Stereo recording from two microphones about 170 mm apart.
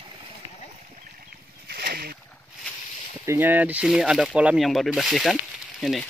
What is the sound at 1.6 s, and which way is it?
Boat, 70° right (ahead or behind).